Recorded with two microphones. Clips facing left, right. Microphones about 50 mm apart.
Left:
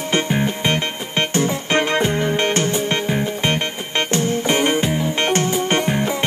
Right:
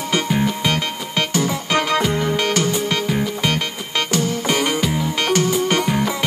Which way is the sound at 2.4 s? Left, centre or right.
Left.